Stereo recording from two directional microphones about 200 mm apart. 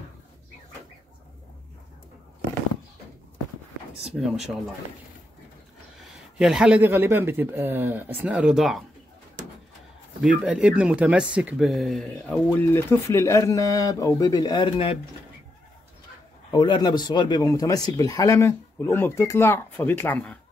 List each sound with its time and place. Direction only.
4.0 s speech: 5° right (ahead or behind)
6.3 s speech: 5° right (ahead or behind)
10.2 s speech: 5° right (ahead or behind); by 15.0 s 25° left (ahead or behind)
16.5 s speech: 20° left (ahead or behind)